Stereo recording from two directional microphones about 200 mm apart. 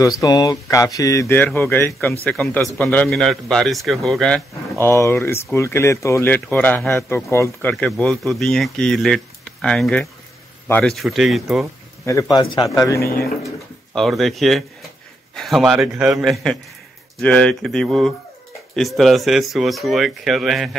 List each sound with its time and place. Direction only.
0.2 s speech: 20° left (ahead or behind); by 11.6 s centre (ahead or behind)
12.1 s speech: 20° left (ahead or behind)
13.9 s speech: centre (ahead or behind)